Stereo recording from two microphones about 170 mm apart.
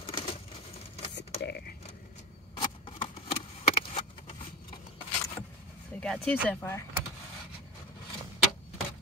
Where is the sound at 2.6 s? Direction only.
30° left (ahead or behind).